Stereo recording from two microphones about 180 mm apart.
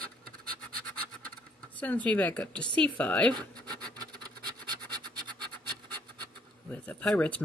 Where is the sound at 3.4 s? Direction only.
25° right (ahead or behind).